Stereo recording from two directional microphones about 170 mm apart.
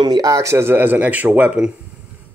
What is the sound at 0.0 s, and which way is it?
Speech, 25° right (ahead or behind).